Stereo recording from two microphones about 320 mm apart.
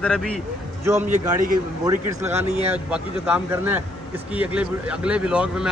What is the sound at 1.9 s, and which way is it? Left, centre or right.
Speech, centre.